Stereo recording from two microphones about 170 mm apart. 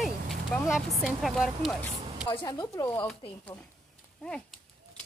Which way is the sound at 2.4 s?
25° left (ahead or behind).